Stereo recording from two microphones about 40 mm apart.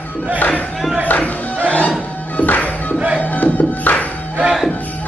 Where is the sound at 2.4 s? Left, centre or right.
Left.